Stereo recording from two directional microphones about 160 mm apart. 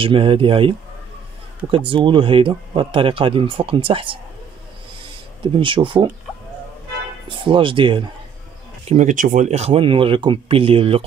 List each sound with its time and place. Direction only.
0.0 s speech: 35° right (ahead or behind)
1.9 s speech: 30° right (ahead or behind)
5.4 s speech: 30° right (ahead or behind)
7.2 s speech: 30° right (ahead or behind)
8.8 s speech: 45° right (ahead or behind)